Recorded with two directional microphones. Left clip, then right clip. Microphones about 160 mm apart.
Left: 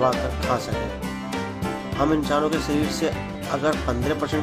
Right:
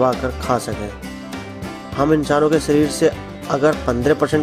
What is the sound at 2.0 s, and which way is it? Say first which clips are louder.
Speech: right 6 dB; 40° right (ahead or behind).